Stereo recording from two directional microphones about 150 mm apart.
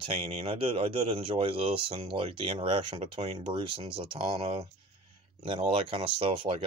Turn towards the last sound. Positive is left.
turn(degrees=-40)  # may be behind; listen again after turning